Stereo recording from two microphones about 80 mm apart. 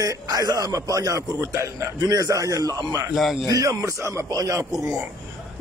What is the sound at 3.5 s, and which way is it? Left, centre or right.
A man's voice, right.